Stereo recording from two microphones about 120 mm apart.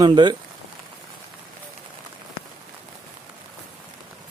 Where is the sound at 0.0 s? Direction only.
40° right (ahead or behind).